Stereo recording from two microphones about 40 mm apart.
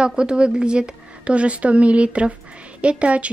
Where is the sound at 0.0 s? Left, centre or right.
Right.